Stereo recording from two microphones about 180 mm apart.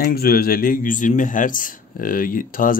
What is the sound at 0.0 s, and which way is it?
Speech, 55° left (ahead or behind).